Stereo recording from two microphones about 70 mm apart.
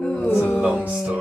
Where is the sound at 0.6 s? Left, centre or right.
Centre.